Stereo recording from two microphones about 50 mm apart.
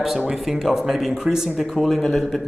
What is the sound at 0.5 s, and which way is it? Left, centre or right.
A man's voice, centre.